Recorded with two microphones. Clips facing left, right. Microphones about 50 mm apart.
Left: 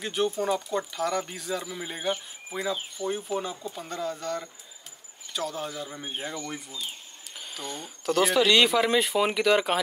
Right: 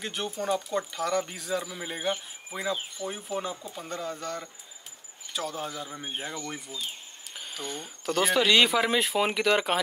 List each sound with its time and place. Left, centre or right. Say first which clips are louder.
0.0 s speech: left 5 dB; centre
3.0 s speech: left 5 dB; right
3.3 s speech: left 1 dB; centre